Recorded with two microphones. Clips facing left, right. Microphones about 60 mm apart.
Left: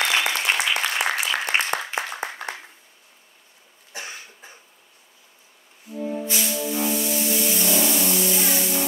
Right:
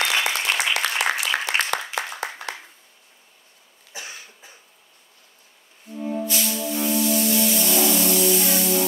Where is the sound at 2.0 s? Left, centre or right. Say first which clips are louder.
Even; right.